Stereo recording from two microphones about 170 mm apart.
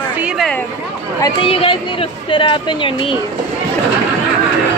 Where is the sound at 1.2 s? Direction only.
35° left (ahead or behind).